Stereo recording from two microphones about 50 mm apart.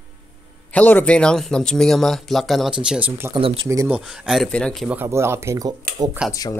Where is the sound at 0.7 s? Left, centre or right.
Left.